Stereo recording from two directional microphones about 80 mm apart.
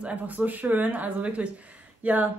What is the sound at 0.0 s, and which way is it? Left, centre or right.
A woman's voice, centre.